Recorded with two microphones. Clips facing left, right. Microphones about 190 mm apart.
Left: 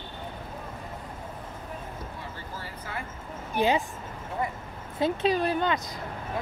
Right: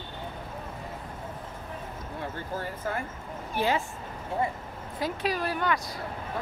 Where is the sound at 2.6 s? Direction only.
50° right (ahead or behind).